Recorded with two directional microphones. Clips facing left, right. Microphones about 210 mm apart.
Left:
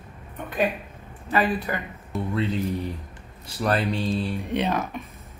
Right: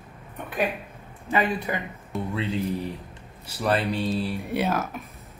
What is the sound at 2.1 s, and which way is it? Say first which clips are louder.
Speech: left 1 dB; centre (ahead or behind).